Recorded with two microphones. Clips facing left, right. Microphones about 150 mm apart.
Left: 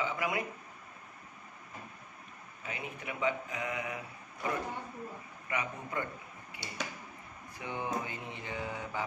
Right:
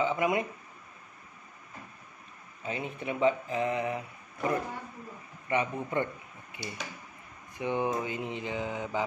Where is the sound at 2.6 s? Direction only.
30° right (ahead or behind).